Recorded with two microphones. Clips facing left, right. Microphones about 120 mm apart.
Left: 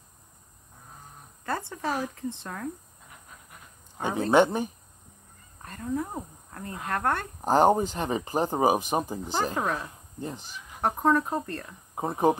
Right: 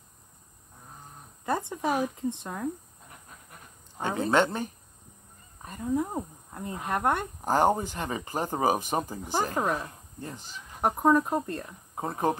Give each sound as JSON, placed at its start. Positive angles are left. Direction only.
{"t": 1.4, "sound": "speech", "side_deg": -15}
{"t": 4.3, "sound": "speech", "side_deg": 15}
{"t": 5.6, "sound": "speech", "side_deg": -15}
{"t": 7.4, "sound": "speech", "side_deg": 15}
{"t": 9.2, "sound": "speech", "side_deg": -15}
{"t": 9.6, "sound": "speech", "side_deg": -5}
{"t": 10.2, "sound": "speech", "side_deg": 15}
{"t": 10.8, "sound": "speech", "side_deg": -15}
{"t": 11.9, "sound": "speech", "side_deg": 15}